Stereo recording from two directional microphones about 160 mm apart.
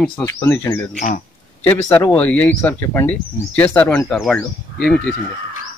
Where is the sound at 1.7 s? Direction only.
10° left (ahead or behind).